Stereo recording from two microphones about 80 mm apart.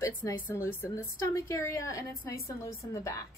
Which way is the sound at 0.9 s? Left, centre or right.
Left.